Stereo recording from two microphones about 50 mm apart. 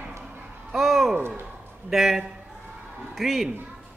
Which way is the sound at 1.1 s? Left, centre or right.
Right.